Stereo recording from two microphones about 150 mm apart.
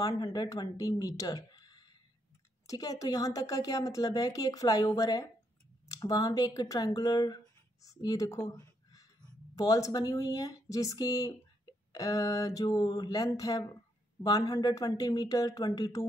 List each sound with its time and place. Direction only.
0.0 s speech: 25° left (ahead or behind)